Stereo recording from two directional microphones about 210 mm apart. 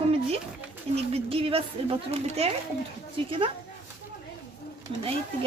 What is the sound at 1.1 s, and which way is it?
Speech, 25° right (ahead or behind).